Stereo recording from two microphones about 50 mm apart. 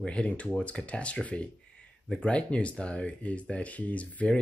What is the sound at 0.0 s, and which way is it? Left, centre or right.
Speech, left.